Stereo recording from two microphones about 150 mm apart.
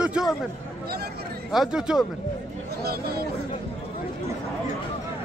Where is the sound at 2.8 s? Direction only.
90° right.